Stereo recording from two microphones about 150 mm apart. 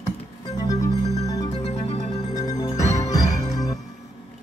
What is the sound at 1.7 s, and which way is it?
Music, 45° left (ahead or behind).